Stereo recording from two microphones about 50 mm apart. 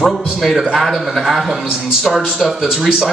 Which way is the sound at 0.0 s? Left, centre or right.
Centre.